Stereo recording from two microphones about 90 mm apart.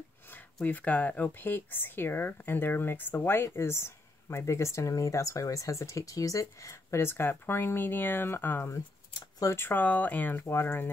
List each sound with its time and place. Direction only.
0.3 s speech: 20° left (ahead or behind); by 9.7 s 35° left (ahead or behind)
9.7 s speech: 20° left (ahead or behind)